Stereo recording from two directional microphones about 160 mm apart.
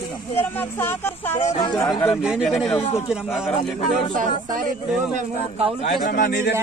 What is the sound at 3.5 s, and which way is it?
Speech, 40° left (ahead or behind).